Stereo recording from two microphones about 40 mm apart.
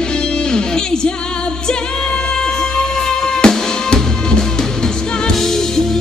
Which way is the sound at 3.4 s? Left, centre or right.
Left.